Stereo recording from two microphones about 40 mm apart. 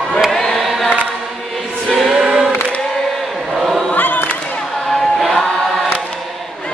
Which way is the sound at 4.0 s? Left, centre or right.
Left.